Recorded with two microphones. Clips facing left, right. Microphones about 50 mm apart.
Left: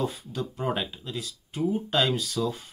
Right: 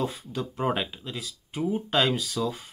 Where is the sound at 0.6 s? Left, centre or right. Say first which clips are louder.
Right 3 dB; right.